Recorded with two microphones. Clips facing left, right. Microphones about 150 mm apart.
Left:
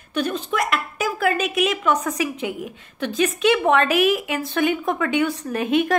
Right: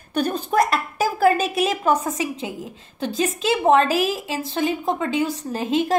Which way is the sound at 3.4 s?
30° right (ahead or behind).